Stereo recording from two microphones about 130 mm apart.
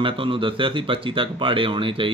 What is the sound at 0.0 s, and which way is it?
Speech, 40° right (ahead or behind).